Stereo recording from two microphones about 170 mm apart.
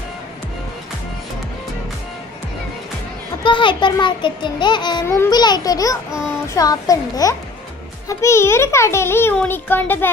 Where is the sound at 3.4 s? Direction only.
30° left (ahead or behind).